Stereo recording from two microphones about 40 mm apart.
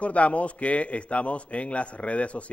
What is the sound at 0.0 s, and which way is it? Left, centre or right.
A man's voice, left.